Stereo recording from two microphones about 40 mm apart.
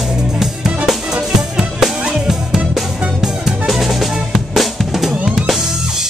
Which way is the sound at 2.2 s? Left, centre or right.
Centre.